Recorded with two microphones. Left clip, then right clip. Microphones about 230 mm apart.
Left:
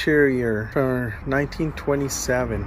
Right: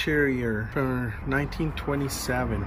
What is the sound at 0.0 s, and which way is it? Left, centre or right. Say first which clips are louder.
Speech: left 6 dB; left.